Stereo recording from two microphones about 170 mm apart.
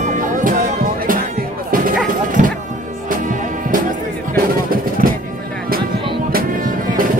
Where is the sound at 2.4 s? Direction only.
45° right (ahead or behind).